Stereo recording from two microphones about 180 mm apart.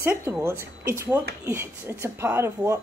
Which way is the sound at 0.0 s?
10° right (ahead or behind).